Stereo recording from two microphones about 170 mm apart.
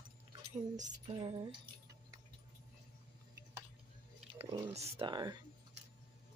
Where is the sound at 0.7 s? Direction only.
45° right (ahead or behind).